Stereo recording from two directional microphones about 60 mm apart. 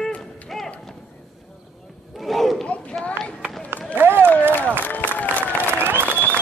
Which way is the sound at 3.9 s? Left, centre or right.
Right.